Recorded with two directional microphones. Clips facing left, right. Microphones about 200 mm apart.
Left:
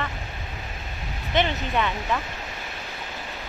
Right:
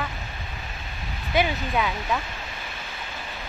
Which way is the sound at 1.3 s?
5° right (ahead or behind).